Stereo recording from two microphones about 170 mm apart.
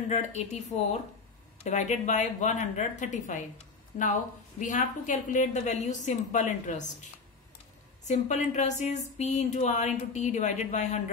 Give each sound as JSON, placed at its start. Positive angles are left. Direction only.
{"t": 0.1, "sound": "speech", "side_deg": 40}
{"t": 8.0, "sound": "speech", "side_deg": 45}